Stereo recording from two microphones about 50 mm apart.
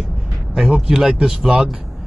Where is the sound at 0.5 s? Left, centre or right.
Centre.